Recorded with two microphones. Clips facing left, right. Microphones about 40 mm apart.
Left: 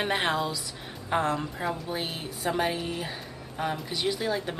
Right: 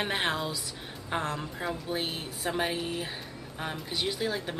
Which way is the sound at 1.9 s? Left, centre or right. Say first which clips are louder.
Even; centre.